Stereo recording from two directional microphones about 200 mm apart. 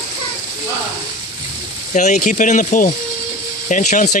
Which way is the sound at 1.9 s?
35° left (ahead or behind).